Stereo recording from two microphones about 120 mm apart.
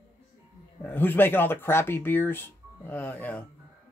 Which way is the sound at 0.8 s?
15° left (ahead or behind).